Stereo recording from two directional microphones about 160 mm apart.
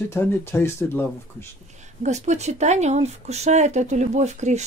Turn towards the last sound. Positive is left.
turn(degrees=-45)  # may be behind; listen again after turning